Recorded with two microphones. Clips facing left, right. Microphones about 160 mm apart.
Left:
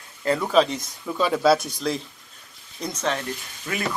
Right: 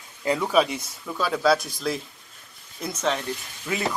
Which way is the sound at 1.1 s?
Centre (ahead or behind).